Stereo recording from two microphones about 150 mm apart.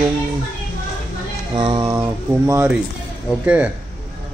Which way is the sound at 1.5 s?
30° right (ahead or behind).